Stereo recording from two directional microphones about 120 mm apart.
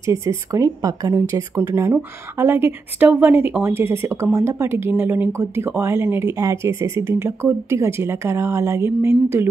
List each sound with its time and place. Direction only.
0.0 s speech: 25° right (ahead or behind)
1.9 s speech: 15° right (ahead or behind)